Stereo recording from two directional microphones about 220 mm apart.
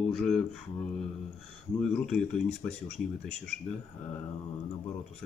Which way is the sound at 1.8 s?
5° left (ahead or behind).